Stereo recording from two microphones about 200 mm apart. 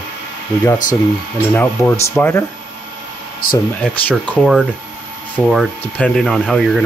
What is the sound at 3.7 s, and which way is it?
Speech, 5° left (ahead or behind).